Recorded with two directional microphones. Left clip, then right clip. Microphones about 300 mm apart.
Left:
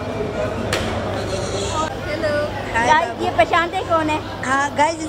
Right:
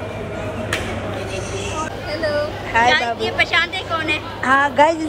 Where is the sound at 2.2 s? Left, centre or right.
Centre.